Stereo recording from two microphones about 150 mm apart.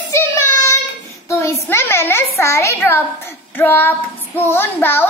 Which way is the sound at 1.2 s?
20° left (ahead or behind).